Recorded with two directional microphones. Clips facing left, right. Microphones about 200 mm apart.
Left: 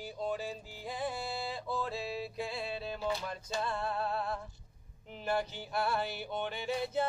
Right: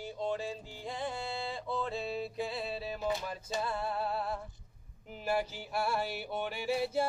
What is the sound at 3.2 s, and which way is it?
Music, 5° right (ahead or behind).